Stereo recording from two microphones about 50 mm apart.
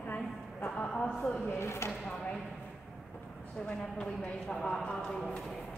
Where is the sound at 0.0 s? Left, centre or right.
Left.